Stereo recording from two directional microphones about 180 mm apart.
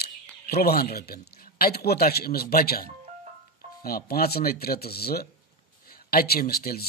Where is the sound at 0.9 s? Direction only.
55° left (ahead or behind).